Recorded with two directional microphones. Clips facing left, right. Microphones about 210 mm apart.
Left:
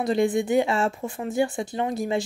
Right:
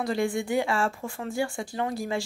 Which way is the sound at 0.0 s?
20° left (ahead or behind).